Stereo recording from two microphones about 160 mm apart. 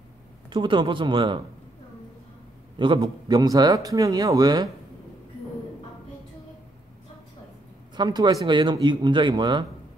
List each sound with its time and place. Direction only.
0.5 s speech: 30° right (ahead or behind)
2.8 s speech: 30° right (ahead or behind)
7.9 s speech: 25° right (ahead or behind)